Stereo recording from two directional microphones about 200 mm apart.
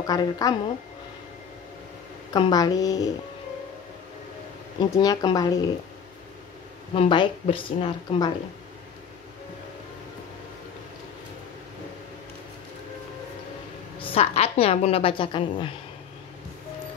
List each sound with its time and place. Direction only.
0.0 s a woman's voice: 20° left (ahead or behind)
2.3 s a woman's voice: 20° left (ahead or behind)
4.7 s a woman's voice: 20° left (ahead or behind)
7.0 s a woman's voice: 25° left (ahead or behind)
13.9 s a woman's voice: 30° left (ahead or behind)